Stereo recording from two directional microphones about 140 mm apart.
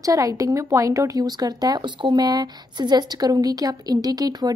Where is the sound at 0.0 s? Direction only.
25° right (ahead or behind).